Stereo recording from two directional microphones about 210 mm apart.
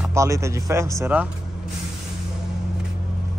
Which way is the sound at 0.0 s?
15° right (ahead or behind).